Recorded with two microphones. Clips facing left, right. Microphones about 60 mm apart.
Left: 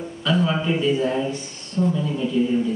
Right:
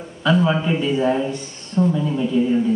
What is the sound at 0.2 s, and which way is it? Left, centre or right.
A man's voice, centre.